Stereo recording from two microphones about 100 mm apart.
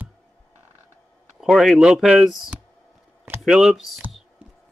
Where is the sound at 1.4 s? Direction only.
Centre (ahead or behind).